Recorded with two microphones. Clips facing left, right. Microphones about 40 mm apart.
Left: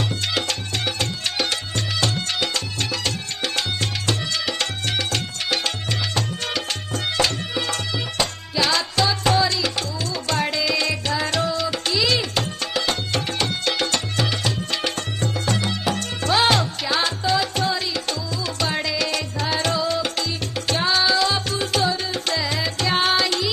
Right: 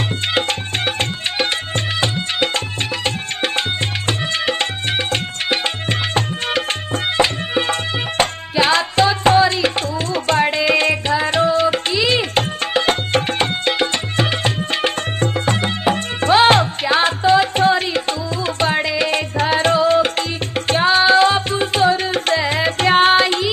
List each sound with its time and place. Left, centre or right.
0.3 s music: right
21.9 s music: right